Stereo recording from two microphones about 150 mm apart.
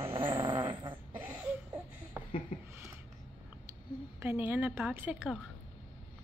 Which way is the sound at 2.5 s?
65° left (ahead or behind).